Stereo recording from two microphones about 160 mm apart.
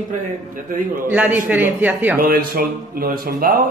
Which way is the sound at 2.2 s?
65° right (ahead or behind).